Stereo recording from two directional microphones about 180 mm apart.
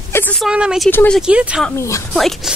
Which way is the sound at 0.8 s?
10° left (ahead or behind).